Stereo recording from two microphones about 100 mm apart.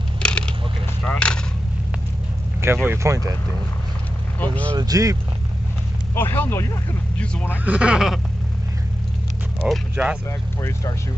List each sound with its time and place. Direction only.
0.2 s a sound: 10° left (ahead or behind)
2.6 s speech: 25° right (ahead or behind)
4.4 s speech: 15° left (ahead or behind)
4.7 s speech: 35° right (ahead or behind)
6.1 s speech: 20° left (ahead or behind)
7.6 s speech: 10° right (ahead or behind)
9.6 s speech: 10° right (ahead or behind)